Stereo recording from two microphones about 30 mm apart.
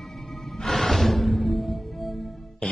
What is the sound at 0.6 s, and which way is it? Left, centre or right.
Music, centre.